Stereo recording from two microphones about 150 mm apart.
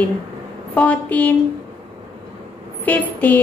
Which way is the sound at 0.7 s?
10° left (ahead or behind).